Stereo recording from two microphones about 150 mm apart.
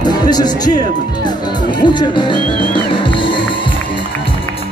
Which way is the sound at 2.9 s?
35° left (ahead or behind).